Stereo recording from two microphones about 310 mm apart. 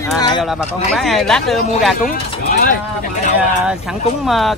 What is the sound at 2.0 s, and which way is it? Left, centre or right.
Speech, left.